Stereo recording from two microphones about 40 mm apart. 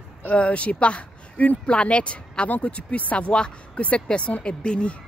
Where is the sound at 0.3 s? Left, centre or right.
Left.